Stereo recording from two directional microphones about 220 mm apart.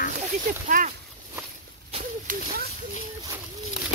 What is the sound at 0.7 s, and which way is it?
Speech, 35° right (ahead or behind).